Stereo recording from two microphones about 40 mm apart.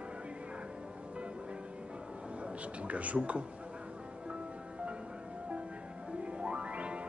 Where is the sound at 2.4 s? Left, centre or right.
Right.